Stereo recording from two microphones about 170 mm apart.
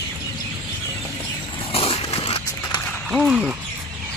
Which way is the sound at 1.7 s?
35° left (ahead or behind).